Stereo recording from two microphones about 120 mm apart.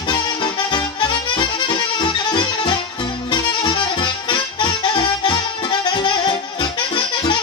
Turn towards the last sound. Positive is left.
turn(degrees=40)  # may be behind; listen again after turning